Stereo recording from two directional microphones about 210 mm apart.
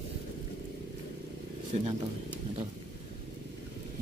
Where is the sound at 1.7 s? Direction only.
30° right (ahead or behind).